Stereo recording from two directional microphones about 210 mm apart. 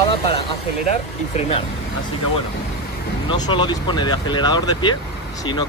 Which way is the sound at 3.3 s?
20° left (ahead or behind).